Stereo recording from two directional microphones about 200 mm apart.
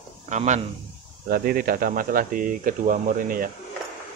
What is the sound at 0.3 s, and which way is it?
Speech, 35° right (ahead or behind).